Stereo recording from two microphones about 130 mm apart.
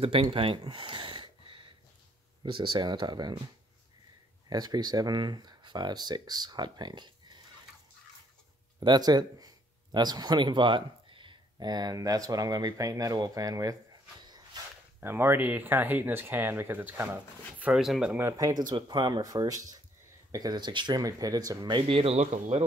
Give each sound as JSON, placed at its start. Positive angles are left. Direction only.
{"t": 0.0, "sound": "speech", "side_deg": -45}
{"t": 4.5, "sound": "speech", "side_deg": -30}
{"t": 8.7, "sound": "speech", "side_deg": -30}
{"t": 14.2, "sound": "dog", "side_deg": -35}
{"t": 15.0, "sound": "speech", "side_deg": -20}
{"t": 18.1, "sound": "speech", "side_deg": -20}
{"t": 18.7, "sound": "speech", "side_deg": -35}